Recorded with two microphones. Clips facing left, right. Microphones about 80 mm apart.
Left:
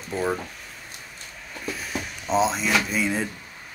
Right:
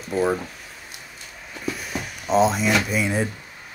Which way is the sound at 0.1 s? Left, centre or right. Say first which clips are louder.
Right 4 dB; centre.